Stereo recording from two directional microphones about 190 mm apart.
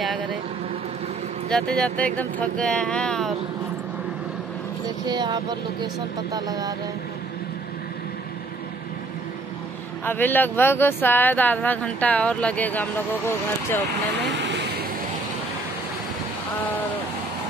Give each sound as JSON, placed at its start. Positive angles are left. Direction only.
{"t": 1.5, "sound": "speech", "side_deg": 5}
{"t": 4.8, "sound": "speech", "side_deg": -20}
{"t": 10.0, "sound": "speech", "side_deg": 10}
{"t": 14.1, "sound": "vehicle", "side_deg": -65}